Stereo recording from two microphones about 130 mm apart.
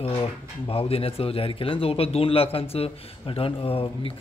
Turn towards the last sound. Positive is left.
turn(degrees=45)  # may be behind; listen again after turning